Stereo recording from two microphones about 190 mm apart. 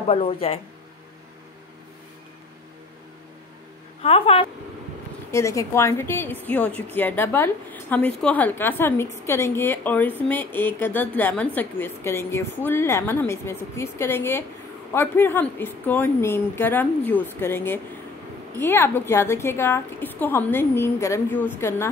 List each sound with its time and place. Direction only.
0.1 s speech: 30° left (ahead or behind)
4.0 s speech: 30° left (ahead or behind)
5.3 s a woman's voice: 15° left (ahead or behind)